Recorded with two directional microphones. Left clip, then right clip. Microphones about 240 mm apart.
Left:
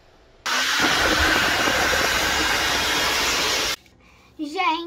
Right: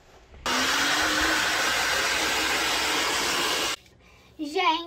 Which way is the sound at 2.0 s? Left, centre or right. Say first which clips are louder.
Left 4 dB; centre.